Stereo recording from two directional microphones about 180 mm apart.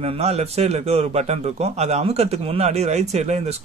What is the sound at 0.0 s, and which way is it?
A man's voice, 35° right (ahead or behind).